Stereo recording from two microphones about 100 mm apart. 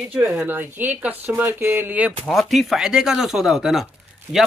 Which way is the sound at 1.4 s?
20° right (ahead or behind).